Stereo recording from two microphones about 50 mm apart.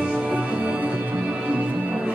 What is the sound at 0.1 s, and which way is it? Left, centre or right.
Music, right.